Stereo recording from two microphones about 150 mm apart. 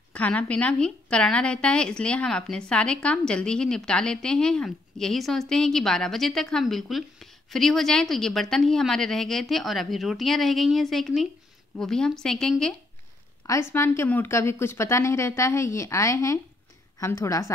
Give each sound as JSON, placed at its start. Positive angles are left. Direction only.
{"t": 0.1, "sound": "a woman's voice", "side_deg": 10}
{"t": 13.5, "sound": "a woman's voice", "side_deg": 15}